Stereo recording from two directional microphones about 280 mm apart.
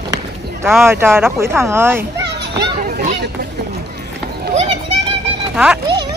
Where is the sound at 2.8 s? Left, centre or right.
Right.